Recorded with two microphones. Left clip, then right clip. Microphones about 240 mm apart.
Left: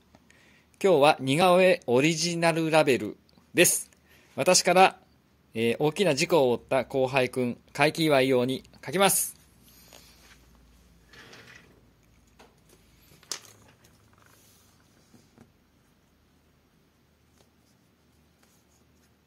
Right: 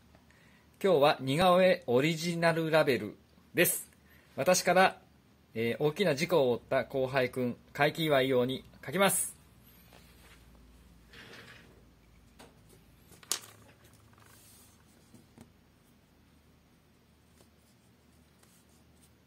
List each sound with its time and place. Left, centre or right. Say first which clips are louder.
0.7 s speech: left 5 dB; left